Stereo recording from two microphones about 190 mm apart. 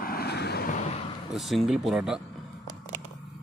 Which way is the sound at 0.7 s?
35° left (ahead or behind).